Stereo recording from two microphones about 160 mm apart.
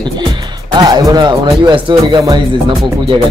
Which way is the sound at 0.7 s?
25° right (ahead or behind).